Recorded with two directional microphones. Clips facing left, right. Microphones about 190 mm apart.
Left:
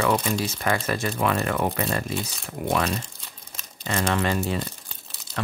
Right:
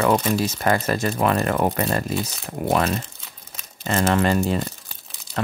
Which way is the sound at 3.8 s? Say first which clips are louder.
Right 5 dB; 45° right (ahead or behind).